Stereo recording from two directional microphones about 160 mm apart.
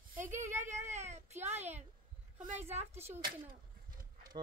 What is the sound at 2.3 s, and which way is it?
Speech, 50° right (ahead or behind).